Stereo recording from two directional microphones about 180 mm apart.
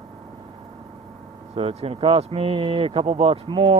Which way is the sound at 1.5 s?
35° right (ahead or behind).